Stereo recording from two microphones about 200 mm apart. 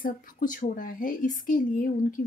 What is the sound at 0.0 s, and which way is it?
Speech, 45° left (ahead or behind).